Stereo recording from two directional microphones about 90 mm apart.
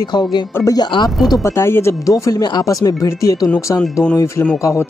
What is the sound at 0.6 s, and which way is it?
Speech, 40° left (ahead or behind).